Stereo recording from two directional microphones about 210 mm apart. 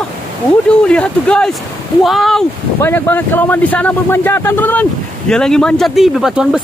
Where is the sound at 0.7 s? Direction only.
5° left (ahead or behind).